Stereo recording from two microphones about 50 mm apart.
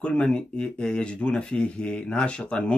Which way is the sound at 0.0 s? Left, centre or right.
Centre.